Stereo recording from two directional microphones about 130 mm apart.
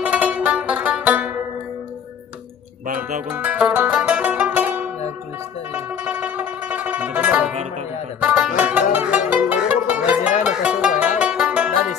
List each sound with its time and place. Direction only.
0.0 s music: 10° right (ahead or behind)
2.9 s music: 90° right
3.3 s music: 10° right (ahead or behind)
6.0 s music: 10° right (ahead or behind)